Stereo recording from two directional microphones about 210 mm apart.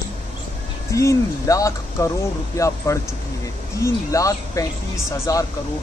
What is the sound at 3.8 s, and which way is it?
Speech, 15° left (ahead or behind).